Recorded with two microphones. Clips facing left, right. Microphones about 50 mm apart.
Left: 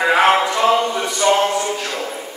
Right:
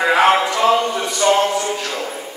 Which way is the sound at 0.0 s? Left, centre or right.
Centre.